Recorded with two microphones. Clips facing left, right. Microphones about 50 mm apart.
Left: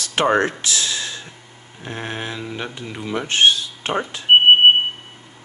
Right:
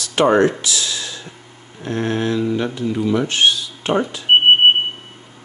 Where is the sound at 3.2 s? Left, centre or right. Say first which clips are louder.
Left 1 dB; left.